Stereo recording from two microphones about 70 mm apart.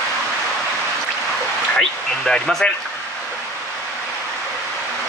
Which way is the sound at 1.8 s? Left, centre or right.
Centre.